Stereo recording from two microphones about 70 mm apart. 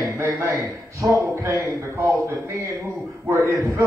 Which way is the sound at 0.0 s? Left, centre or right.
Right.